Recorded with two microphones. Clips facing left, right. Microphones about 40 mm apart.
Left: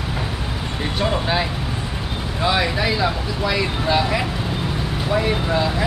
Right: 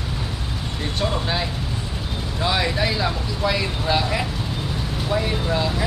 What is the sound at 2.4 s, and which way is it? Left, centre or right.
Vehicle, centre.